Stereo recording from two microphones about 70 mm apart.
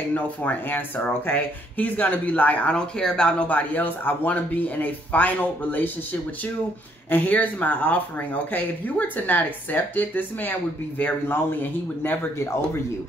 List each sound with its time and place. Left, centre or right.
0.1 s speech: left
2.7 s speech: centre
7.1 s speech: left